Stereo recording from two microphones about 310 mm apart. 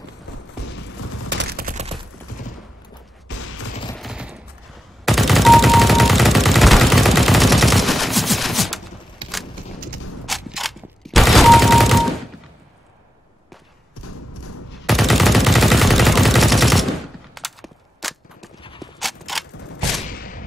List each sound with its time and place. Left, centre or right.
1.4 s fusillade: right
3.3 s fusillade: left
3.9 s fusillade: centre
5.0 s gunshot: centre
9.2 s a sound: centre
10.2 s fusillade: centre
14.9 s machine gun: centre
18.6 s clip-clop: centre
18.9 s a sound: centre
20.1 s a sound: left